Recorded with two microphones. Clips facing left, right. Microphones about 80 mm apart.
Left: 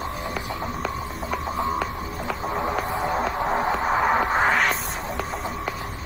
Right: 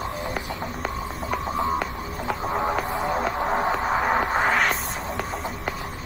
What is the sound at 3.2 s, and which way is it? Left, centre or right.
Music, left.